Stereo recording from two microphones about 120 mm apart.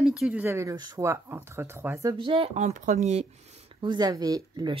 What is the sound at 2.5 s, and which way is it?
Speech, 85° right.